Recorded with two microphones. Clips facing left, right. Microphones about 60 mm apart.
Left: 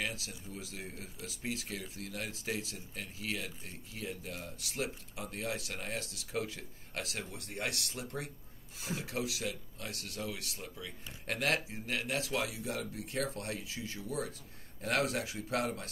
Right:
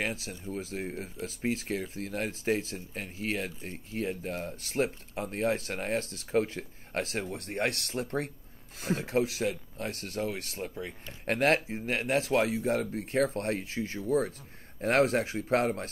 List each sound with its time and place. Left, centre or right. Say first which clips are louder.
0.0 s speech: right 6 dB; right
9.0 s speech: right 9 dB; right